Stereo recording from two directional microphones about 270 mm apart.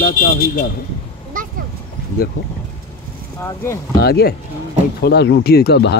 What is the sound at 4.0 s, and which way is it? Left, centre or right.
Speech, left.